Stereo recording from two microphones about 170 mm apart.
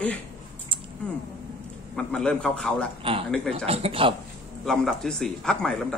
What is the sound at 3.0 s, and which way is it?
Speech, 30° right (ahead or behind).